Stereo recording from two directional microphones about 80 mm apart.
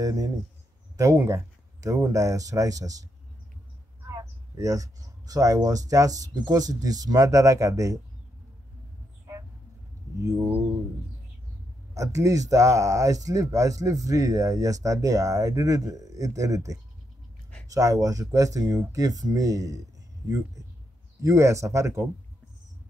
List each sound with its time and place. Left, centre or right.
0.0 s speech: right
4.1 s speech: right
6.3 s speech: right
11.9 s speech: right